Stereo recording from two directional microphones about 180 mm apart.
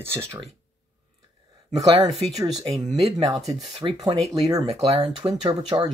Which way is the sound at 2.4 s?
20° right (ahead or behind).